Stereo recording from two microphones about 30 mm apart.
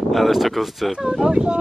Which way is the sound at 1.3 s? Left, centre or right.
Right.